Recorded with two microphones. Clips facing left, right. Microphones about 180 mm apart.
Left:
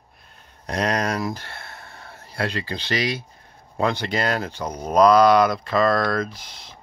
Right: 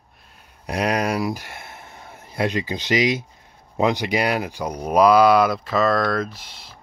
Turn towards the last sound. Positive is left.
turn(degrees=-5)  # may be behind; listen again after turning